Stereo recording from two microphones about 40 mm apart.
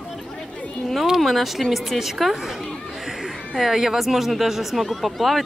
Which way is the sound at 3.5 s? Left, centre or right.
Centre.